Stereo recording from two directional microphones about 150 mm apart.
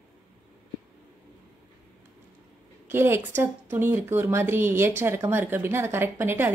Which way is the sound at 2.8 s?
15° right (ahead or behind).